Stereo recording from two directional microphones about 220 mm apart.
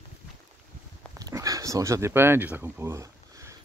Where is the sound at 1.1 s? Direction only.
15° right (ahead or behind).